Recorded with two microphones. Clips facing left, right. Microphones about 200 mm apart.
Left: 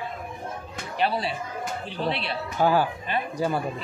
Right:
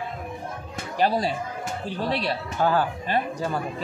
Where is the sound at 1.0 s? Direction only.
40° right (ahead or behind).